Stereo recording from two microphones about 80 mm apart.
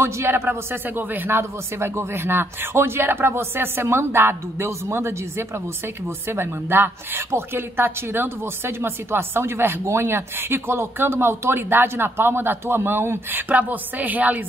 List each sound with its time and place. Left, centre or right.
0.0 s a woman's voice: right